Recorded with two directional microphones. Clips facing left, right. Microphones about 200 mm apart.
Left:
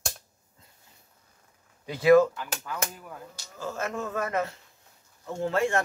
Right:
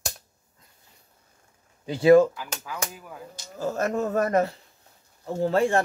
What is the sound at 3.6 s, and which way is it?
Speech, 40° right (ahead or behind).